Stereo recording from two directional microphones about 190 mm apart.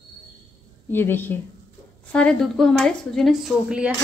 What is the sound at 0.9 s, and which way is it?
A woman's voice, 10° left (ahead or behind).